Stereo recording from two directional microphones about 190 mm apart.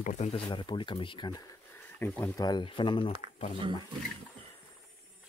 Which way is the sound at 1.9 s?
10° left (ahead or behind).